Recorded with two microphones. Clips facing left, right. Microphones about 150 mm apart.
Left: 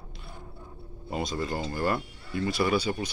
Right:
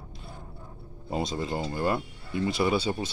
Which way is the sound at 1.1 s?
30° right (ahead or behind).